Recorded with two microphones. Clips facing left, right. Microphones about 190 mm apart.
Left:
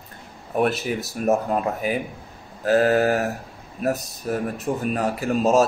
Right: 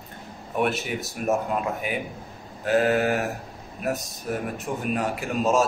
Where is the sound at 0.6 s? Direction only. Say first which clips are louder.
Left 3 dB; 35° left (ahead or behind).